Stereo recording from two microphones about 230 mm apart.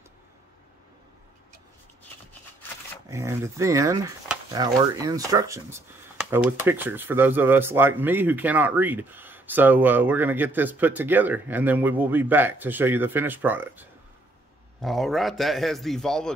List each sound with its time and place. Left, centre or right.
3.1 s a man's voice: centre